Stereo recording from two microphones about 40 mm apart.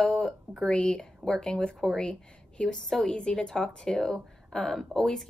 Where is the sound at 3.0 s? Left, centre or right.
Left.